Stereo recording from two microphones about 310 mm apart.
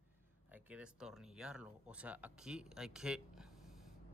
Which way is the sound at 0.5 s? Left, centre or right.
Centre.